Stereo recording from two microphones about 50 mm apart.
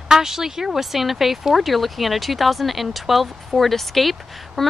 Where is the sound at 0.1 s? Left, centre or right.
Centre.